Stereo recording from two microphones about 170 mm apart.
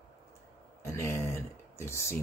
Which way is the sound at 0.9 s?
15° left (ahead or behind).